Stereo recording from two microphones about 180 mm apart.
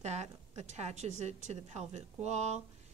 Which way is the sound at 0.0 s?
40° right (ahead or behind).